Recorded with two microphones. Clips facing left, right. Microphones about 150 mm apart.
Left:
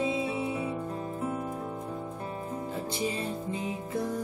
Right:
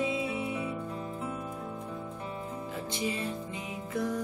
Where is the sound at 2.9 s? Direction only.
30° left (ahead or behind).